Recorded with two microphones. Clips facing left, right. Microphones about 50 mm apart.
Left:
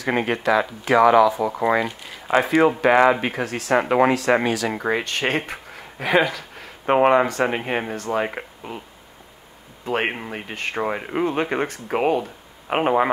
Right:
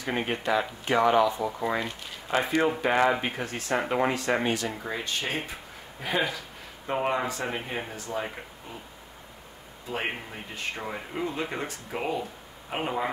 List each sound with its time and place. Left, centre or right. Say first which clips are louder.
0.0 s speech: left 7 dB; left
9.8 s speech: left 8 dB; left